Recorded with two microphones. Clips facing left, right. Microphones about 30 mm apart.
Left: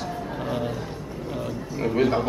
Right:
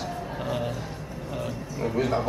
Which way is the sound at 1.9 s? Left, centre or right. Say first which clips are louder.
Left 4 dB; left.